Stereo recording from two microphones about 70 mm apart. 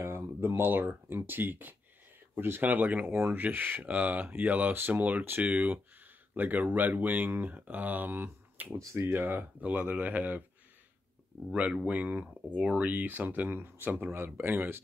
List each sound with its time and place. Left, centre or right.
0.0 s speech: right
8.7 s speech: right
11.7 s speech: centre